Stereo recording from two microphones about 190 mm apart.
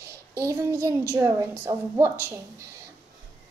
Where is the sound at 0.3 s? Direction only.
15° right (ahead or behind).